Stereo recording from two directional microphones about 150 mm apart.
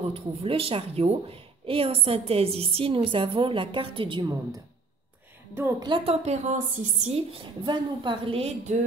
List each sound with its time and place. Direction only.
0.1 s a woman's voice: 40° right (ahead or behind)
5.8 s a woman's voice: 30° right (ahead or behind)
6.2 s a woman's voice: 50° right (ahead or behind)